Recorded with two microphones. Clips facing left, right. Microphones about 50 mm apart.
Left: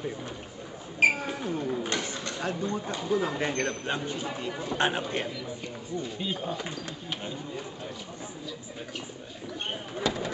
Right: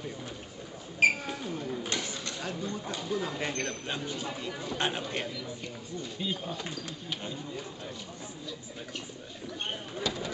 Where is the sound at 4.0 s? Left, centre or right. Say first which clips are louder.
Left 3 dB; centre.